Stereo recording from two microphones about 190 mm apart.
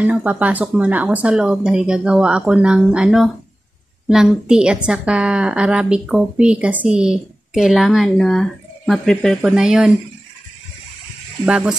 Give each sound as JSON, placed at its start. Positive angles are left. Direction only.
{"t": 0.0, "sound": "a woman's voice", "side_deg": -10}
{"t": 11.4, "sound": "a woman's voice", "side_deg": -5}